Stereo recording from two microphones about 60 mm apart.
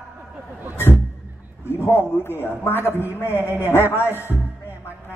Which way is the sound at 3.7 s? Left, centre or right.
Left.